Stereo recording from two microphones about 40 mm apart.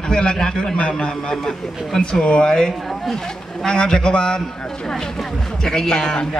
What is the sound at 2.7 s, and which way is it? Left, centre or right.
A man's voice, centre.